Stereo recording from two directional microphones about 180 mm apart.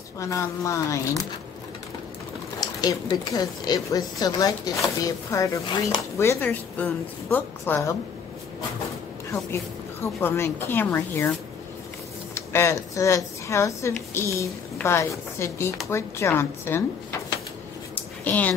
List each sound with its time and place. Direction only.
0.2 s speech: 15° left (ahead or behind)
2.6 s a woman's voice: 20° left (ahead or behind)
10.0 s speech: 15° left (ahead or behind)
12.4 s speech: 15° left (ahead or behind)
18.2 s speech: 10° left (ahead or behind)